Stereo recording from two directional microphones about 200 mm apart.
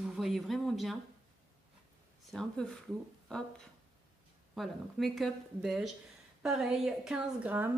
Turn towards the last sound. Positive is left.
turn(degrees=-5)  # may be behind; listen again after turning